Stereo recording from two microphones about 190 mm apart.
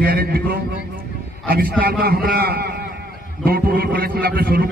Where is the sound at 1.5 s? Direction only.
50° right (ahead or behind).